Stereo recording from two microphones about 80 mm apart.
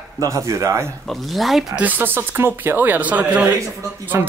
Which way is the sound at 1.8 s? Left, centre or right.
Right.